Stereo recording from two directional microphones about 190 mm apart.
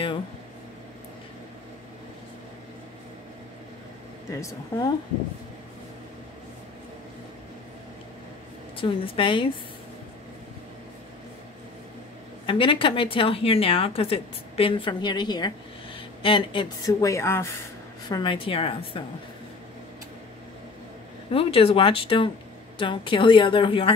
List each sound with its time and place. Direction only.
4.3 s speech: 15° left (ahead or behind)
8.7 s a woman's voice: 30° left (ahead or behind)
12.4 s a woman's voice: 25° left (ahead or behind)
21.3 s a woman's voice: 30° left (ahead or behind)